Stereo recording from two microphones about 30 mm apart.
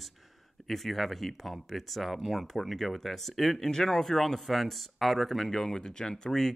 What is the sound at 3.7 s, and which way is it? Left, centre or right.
Speech, centre.